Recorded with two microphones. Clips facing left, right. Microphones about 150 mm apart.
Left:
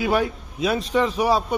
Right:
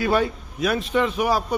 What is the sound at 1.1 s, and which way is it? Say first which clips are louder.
Speech: left 2 dB; 30° left (ahead or behind).